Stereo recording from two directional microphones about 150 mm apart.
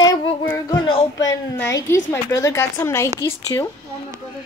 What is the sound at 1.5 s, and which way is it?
A woman's voice, 15° left (ahead or behind).